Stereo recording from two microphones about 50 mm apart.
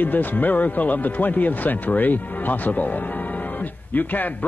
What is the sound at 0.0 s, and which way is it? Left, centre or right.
Speech, left.